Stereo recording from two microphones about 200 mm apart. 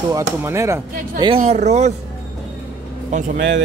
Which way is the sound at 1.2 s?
30° right (ahead or behind).